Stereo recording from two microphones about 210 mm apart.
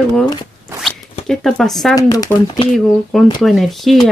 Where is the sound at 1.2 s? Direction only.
Centre (ahead or behind).